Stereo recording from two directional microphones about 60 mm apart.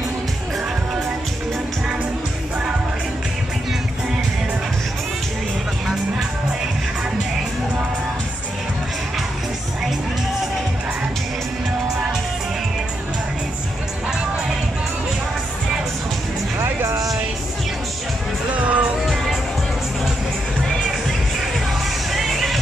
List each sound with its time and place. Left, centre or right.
16.6 s music: right
18.5 s music: right
22.1 s music: centre